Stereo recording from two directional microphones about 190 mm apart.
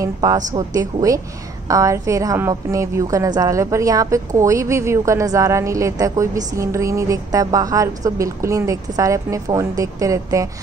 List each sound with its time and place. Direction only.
0.0 s a woman's voice: 20° right (ahead or behind)